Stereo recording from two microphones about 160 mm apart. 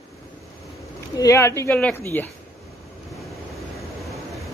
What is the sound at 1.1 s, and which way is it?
Speech, 20° left (ahead or behind).